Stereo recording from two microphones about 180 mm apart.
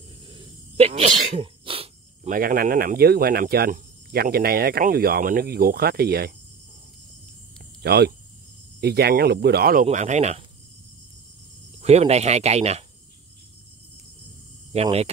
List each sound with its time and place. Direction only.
0.3 s sneeze: 30° right (ahead or behind)
2.2 s speech: 50° right (ahead or behind)
7.8 s speech: 65° right (ahead or behind)
9.8 s speech: 40° right (ahead or behind)
11.8 s speech: 35° right (ahead or behind)
14.7 s speech: 35° right (ahead or behind)